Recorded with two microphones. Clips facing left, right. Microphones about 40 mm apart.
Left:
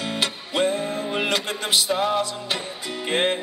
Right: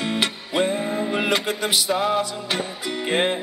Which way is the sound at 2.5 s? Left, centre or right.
Right.